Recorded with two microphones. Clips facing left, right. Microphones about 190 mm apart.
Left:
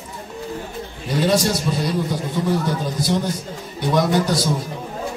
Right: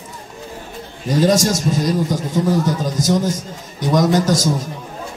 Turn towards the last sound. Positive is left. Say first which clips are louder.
# right 3 dB
turn(degrees=-45)  # may be behind; listen again after turning